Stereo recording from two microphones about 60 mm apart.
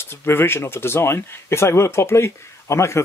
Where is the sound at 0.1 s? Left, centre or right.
Left.